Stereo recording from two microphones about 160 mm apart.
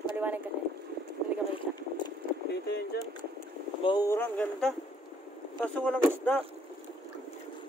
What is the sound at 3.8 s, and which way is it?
Speech, 25° left (ahead or behind).